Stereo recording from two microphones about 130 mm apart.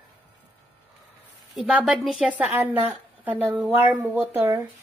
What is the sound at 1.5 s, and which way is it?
A woman's voice, centre (ahead or behind).